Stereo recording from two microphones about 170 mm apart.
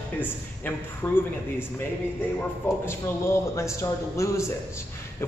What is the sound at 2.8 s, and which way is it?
A man's voice, 15° left (ahead or behind).